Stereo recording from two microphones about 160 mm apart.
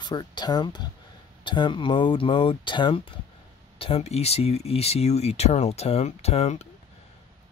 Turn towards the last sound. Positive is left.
turn(degrees=40)  # may be behind; listen again after turning